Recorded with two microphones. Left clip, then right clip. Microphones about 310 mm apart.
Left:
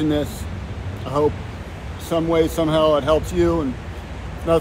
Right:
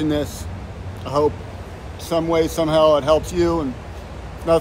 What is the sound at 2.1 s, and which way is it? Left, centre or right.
Speech, centre.